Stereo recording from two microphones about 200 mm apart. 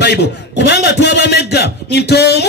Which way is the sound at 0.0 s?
55° left (ahead or behind).